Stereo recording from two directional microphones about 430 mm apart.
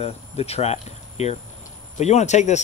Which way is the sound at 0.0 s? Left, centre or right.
Centre.